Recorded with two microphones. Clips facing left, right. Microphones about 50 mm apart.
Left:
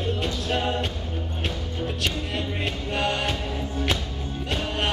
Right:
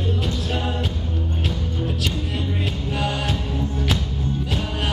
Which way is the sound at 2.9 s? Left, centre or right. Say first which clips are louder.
Even; centre.